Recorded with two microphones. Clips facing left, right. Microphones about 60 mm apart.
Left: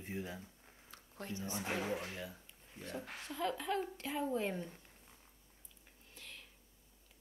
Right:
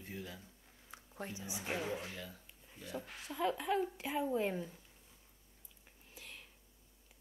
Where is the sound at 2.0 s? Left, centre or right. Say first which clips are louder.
Left 2 dB; centre.